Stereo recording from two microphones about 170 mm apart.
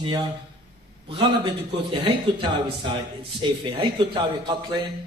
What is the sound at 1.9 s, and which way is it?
Speech, 30° right (ahead or behind).